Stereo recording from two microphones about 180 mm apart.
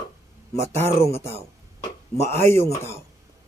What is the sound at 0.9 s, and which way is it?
Speech, 15° left (ahead or behind).